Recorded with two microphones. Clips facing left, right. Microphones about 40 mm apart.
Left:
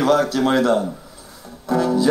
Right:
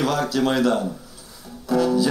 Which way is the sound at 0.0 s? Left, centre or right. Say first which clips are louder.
Left 4 dB; left.